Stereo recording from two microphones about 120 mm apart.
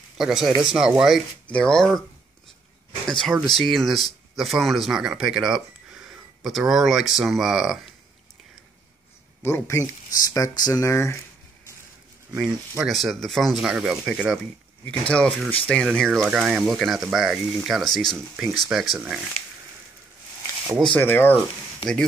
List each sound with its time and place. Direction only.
0.2 s speech: 5° right (ahead or behind)
1.5 s speech: 5° left (ahead or behind)
3.1 s speech: 5° left (ahead or behind)
9.4 s speech: 20° left (ahead or behind)
12.4 s speech: 20° right (ahead or behind)
12.8 s speech: centre (ahead or behind)
14.9 s speech: 10° left (ahead or behind)
20.8 s speech: 15° left (ahead or behind)